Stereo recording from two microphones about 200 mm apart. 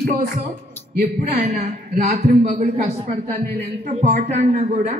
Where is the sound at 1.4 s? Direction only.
35° right (ahead or behind).